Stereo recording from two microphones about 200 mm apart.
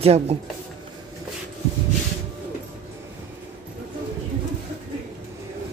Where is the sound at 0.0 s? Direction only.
30° right (ahead or behind).